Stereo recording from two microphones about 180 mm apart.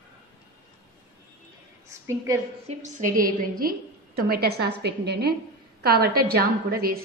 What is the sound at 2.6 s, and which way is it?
A woman's voice, 45° right (ahead or behind).